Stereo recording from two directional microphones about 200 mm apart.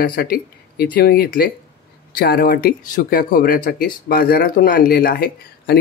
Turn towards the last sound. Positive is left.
turn(degrees=50)  # may be behind; listen again after turning